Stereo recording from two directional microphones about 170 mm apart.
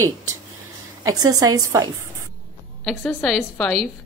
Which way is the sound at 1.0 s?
20° right (ahead or behind).